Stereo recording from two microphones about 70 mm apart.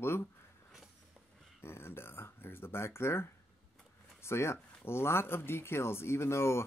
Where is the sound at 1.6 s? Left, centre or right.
Left.